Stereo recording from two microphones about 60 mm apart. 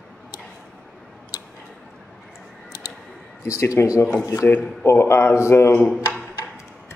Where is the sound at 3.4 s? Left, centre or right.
Left.